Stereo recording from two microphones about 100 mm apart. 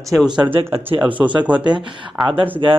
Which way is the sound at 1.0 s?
55° right (ahead or behind).